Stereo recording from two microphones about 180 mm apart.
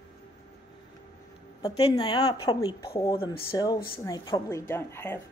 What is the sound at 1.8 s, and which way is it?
Speech, 30° left (ahead or behind).